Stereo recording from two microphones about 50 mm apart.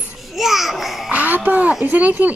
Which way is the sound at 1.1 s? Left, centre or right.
Right.